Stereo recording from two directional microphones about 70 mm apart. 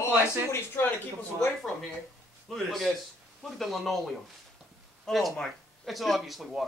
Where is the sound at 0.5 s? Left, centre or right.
Left.